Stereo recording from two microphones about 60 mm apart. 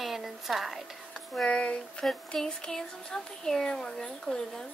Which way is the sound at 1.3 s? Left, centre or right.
Centre.